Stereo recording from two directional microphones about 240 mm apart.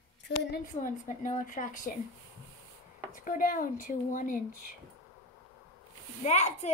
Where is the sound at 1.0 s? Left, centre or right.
Left.